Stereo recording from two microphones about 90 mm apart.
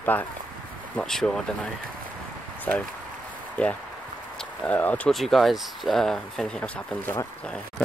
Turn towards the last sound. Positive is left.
turn(degrees=15)  # may be behind; listen again after turning